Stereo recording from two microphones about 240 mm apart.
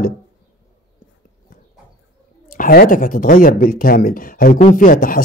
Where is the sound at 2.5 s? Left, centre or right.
Left.